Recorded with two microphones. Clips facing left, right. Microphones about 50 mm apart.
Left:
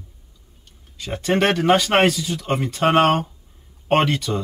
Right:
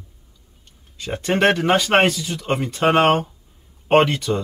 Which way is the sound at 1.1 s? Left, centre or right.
Centre.